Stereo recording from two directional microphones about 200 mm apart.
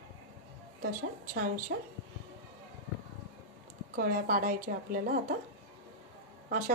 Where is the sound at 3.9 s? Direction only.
45° right (ahead or behind).